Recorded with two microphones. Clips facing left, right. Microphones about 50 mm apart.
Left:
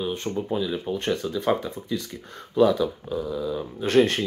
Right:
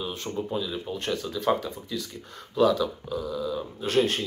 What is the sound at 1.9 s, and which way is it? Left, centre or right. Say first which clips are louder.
Speech: left 4 dB; left.